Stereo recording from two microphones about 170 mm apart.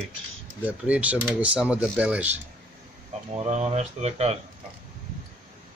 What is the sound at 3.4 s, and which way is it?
Speech, 40° right (ahead or behind).